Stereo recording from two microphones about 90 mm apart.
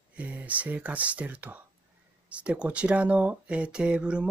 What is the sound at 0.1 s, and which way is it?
Speech, 15° right (ahead or behind).